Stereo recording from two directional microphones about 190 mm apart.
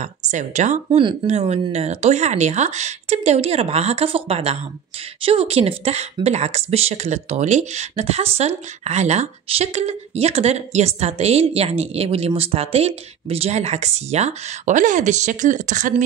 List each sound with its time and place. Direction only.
0.0 s speech: 40° right (ahead or behind)